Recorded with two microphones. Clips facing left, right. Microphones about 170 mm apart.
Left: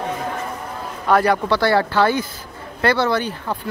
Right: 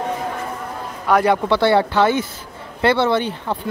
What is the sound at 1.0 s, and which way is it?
Speech, 20° right (ahead or behind).